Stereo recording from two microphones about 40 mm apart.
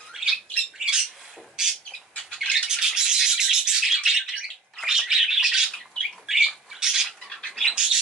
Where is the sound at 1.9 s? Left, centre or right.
Centre.